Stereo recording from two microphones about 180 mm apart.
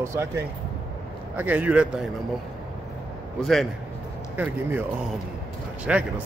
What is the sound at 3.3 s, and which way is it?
Speech, centre (ahead or behind).